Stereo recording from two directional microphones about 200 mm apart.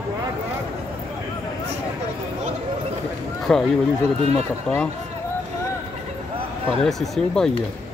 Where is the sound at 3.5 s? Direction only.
5° left (ahead or behind).